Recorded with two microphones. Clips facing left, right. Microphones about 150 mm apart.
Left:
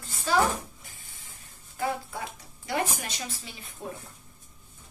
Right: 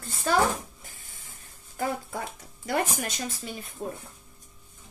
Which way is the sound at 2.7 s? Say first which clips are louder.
Right 2 dB; 45° right (ahead or behind).